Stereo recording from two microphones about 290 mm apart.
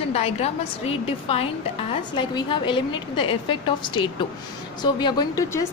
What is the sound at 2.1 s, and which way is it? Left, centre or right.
A woman's voice, centre.